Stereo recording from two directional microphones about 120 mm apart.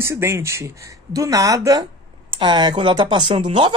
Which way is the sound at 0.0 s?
25° right (ahead or behind).